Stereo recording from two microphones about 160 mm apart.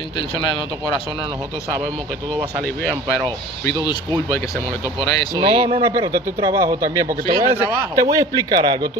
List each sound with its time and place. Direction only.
2.8 s speech: 10° left (ahead or behind)
5.4 s speech: 35° right (ahead or behind)
6.1 s speech: 20° right (ahead or behind)